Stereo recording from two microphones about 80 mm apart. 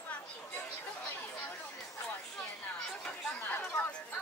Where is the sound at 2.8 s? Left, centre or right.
Centre.